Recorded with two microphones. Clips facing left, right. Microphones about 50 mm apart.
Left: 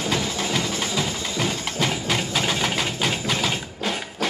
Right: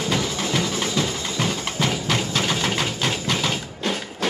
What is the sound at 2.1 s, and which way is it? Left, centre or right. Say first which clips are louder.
Engine: right 1 dB; centre.